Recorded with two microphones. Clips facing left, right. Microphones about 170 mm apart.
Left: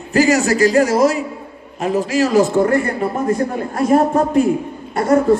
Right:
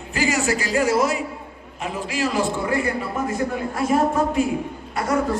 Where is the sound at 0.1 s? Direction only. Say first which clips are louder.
Left 8 dB; 45° left (ahead or behind).